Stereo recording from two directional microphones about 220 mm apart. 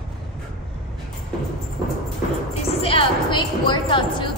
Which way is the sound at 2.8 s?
25° left (ahead or behind).